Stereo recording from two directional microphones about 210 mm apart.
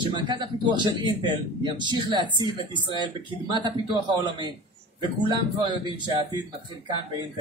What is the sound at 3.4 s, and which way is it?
A man's voice, 20° right (ahead or behind).